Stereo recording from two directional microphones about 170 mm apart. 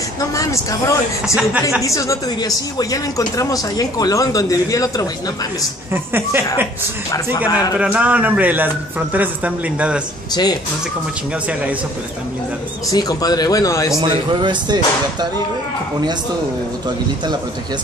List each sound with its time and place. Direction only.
0.2 s speech: 20° left (ahead or behind)
1.2 s a man's voice: 5° right (ahead or behind)
1.8 s speech: 20° left (ahead or behind)
5.9 s a man's voice: 15° right (ahead or behind)
7.8 s a man's voice: 10° right (ahead or behind)
10.3 s speech: 25° left (ahead or behind)
12.9 s speech: 20° left (ahead or behind)
14.0 s speech: 25° right (ahead or behind)